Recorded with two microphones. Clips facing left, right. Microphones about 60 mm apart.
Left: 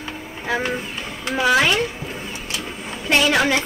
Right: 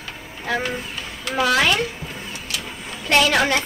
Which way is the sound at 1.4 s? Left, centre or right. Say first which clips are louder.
Left 2 dB; centre.